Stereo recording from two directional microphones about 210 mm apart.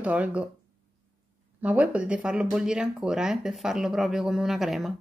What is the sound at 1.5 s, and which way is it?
Speech, 5° right (ahead or behind).